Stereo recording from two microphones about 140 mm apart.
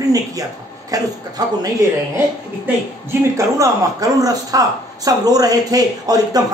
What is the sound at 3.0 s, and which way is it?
Speech, 20° right (ahead or behind).